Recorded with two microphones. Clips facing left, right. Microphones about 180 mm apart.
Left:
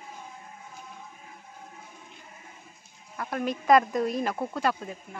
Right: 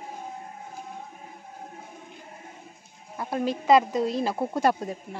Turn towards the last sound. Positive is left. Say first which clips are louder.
# right 5 dB
turn(degrees=-35)  # may be behind; listen again after turning